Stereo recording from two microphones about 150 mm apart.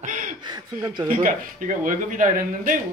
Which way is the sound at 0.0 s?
60° right (ahead or behind).